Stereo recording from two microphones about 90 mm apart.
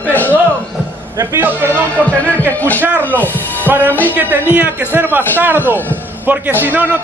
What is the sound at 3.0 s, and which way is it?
Speech, 20° left (ahead or behind).